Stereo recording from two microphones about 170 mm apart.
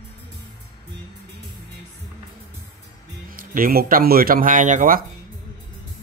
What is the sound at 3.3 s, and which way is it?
Speech, 55° right (ahead or behind).